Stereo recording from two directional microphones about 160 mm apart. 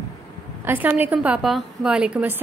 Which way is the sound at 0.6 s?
10° right (ahead or behind).